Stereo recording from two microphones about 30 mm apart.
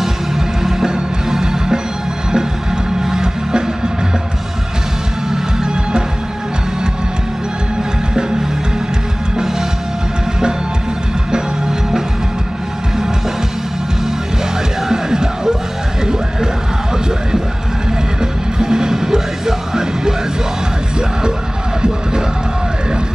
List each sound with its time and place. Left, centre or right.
1.3 s music: centre
14.8 s music: centre
18.2 s music: right